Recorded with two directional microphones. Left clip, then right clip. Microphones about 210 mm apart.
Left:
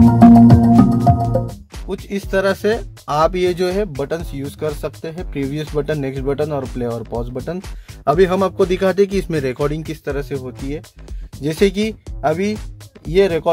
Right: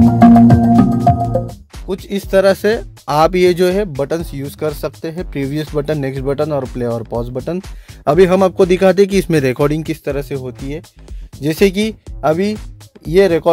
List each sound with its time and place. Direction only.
0.1 s music: 10° left (ahead or behind)
0.7 s music: centre (ahead or behind)
2.0 s a man's voice: 45° right (ahead or behind)
11.4 s a man's voice: 45° right (ahead or behind)